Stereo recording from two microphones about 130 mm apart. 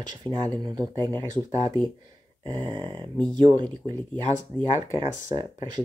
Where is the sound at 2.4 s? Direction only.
40° right (ahead or behind).